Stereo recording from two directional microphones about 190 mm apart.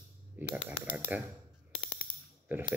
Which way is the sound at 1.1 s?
10° right (ahead or behind).